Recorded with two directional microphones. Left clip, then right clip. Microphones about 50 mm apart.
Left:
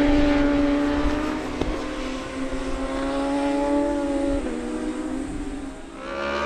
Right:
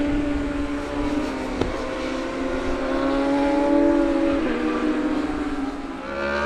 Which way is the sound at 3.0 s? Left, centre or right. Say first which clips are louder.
Right 3 dB; centre.